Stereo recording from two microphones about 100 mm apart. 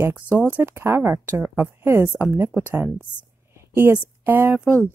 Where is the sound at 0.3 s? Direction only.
20° right (ahead or behind).